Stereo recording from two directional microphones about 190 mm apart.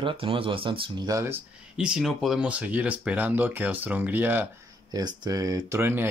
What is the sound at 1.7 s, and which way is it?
Speech, 5° right (ahead or behind).